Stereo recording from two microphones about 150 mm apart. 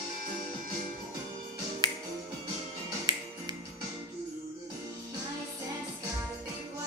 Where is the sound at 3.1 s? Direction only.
25° right (ahead or behind).